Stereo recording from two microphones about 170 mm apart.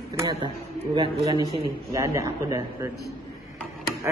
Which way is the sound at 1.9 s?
15° right (ahead or behind).